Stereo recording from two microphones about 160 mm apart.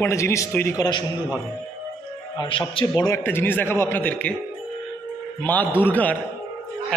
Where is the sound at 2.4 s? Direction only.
35° left (ahead or behind); by 4.3 s 10° left (ahead or behind).